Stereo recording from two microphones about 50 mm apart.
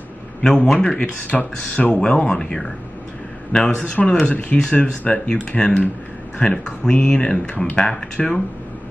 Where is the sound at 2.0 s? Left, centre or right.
Centre.